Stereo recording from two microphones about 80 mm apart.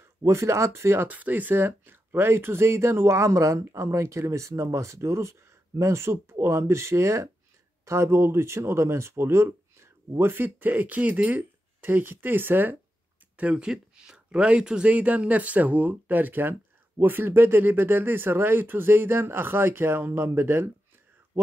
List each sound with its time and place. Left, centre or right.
0.2 s speech: right
1.0 s speech: right
13.4 s speech: centre; by 20.7 s right